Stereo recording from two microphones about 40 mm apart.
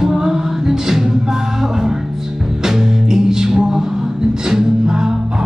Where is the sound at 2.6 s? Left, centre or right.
Centre.